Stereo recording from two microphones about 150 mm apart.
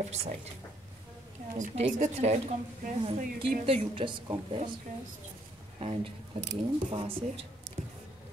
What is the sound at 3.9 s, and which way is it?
Speech, 35° right (ahead or behind).